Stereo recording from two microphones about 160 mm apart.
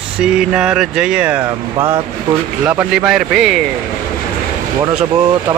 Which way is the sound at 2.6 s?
10° right (ahead or behind).